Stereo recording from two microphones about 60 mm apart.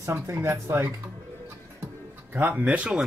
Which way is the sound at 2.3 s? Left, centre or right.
Right.